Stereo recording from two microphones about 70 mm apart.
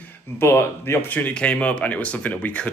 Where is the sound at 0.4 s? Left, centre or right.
Left.